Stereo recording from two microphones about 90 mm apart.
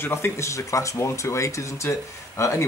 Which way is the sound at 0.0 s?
25° left (ahead or behind).